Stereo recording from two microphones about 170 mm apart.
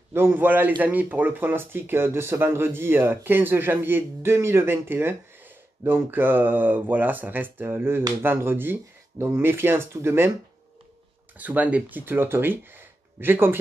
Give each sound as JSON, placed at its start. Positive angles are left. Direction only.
{"t": 0.1, "sound": "speech", "side_deg": -15}
{"t": 11.3, "sound": "speech", "side_deg": -10}